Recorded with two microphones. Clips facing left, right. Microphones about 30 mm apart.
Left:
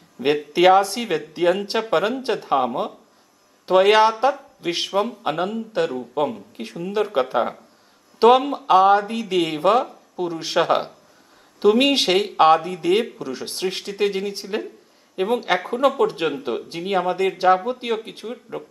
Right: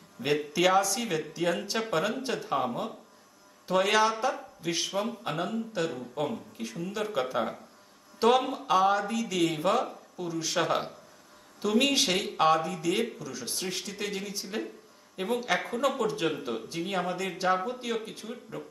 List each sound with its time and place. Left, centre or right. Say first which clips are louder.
0.5 s speech: left 10 dB; left